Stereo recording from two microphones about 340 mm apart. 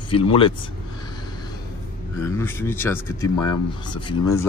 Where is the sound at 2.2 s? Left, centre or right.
Centre.